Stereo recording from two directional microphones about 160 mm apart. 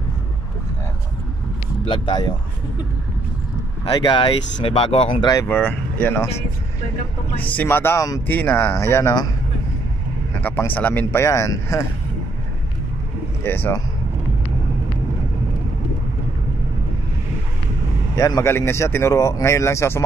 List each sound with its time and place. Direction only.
1.9 s speech: 30° left (ahead or behind)
4.0 s speech: 35° left (ahead or behind)
5.3 s speech: 15° left (ahead or behind)
7.5 s speech: 15° left (ahead or behind)
10.4 s speech: 10° left (ahead or behind)
13.4 s speech: 15° left (ahead or behind)
18.1 s speech: 20° left (ahead or behind)